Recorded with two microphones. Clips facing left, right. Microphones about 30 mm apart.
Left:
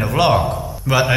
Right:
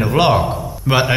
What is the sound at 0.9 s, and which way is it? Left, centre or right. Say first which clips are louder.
Speech: right 1 dB; right.